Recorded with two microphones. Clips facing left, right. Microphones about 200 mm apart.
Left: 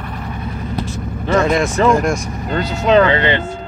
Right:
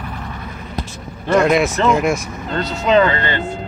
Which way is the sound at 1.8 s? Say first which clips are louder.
Left 2 dB; 5° right (ahead or behind).